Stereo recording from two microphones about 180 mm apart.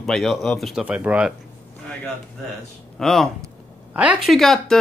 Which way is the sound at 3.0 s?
Centre (ahead or behind).